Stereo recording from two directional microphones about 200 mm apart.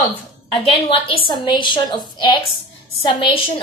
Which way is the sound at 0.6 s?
25° left (ahead or behind).